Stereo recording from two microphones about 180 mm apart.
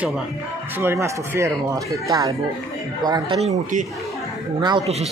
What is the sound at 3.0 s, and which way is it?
Speech, 25° right (ahead or behind).